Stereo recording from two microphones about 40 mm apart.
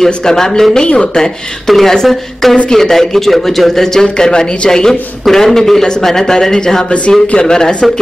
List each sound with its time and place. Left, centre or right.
0.0 s a man's voice: centre
1.7 s a man's voice: centre
6.9 s speech: left